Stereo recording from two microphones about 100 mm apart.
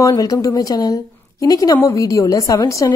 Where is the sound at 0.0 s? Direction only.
35° left (ahead or behind).